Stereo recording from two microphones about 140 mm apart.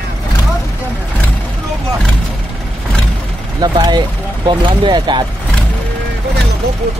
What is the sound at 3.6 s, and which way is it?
Speech, 30° right (ahead or behind).